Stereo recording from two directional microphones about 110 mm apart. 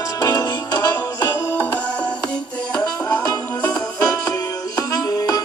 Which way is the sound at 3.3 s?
35° left (ahead or behind).